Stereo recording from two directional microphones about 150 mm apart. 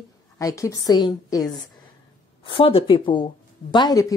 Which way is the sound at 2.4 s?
35° left (ahead or behind).